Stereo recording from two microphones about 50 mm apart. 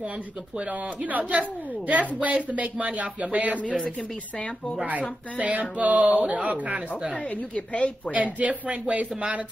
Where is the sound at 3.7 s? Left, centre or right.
Centre.